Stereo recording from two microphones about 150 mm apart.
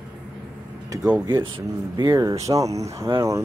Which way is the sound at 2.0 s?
25° right (ahead or behind).